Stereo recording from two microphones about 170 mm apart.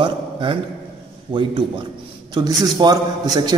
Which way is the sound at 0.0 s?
30° right (ahead or behind).